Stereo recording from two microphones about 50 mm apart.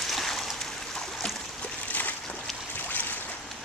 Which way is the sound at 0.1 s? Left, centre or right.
Centre.